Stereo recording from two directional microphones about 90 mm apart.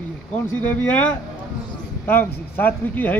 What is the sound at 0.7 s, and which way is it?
Speech, 15° left (ahead or behind).